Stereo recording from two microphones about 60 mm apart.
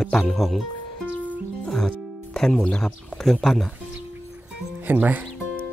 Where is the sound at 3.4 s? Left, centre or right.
Centre.